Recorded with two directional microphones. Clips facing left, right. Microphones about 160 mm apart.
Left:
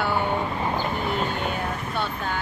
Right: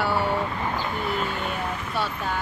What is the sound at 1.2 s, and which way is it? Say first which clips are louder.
Speech: left 2 dB; 40° left (ahead or behind).